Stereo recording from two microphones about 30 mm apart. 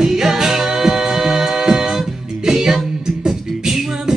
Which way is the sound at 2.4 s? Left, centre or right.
Centre.